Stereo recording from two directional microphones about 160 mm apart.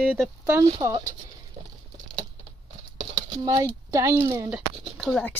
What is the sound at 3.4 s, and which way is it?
Speech, 25° right (ahead or behind).